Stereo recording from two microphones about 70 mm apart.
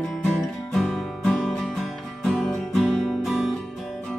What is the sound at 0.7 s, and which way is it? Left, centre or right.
Music, centre.